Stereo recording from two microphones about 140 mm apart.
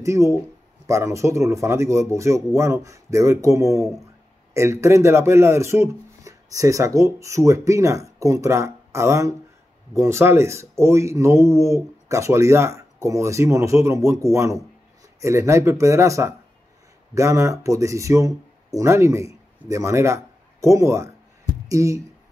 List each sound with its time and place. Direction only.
0.0 s speech: 20° right (ahead or behind)